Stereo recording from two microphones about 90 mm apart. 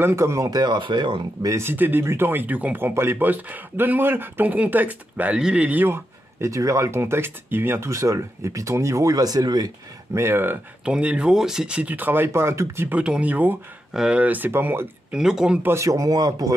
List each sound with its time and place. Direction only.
0.0 s speech: 30° right (ahead or behind)
0.5 s speech: 50° right (ahead or behind)
1.6 s speech: 25° right (ahead or behind)
6.4 s speech: 35° right (ahead or behind)
10.1 s speech: 25° right (ahead or behind)
10.9 s speech: 10° right (ahead or behind); by 12.8 s 30° right (ahead or behind)
12.9 s speech: 10° right (ahead or behind)
15.1 s speech: 5° right (ahead or behind)
15.6 s speech: 30° right (ahead or behind)